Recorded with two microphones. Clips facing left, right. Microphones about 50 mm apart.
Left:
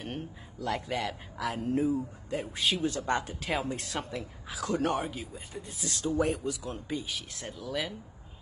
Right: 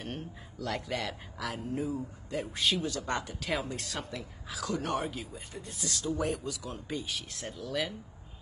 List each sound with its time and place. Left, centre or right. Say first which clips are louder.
0.0 s speech: left 2 dB; centre
1.5 s speech: left 6 dB; left
2.3 s speech: even; centre
2.8 s speech: left 4 dB; left
4.9 s speech: even; centre
5.9 s speech: left 4 dB; left
6.9 s speech: even; centre